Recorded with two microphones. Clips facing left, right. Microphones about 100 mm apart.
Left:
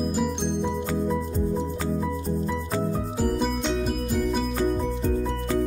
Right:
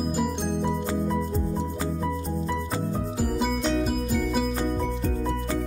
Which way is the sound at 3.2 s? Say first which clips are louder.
Left 1 dB; centre (ahead or behind).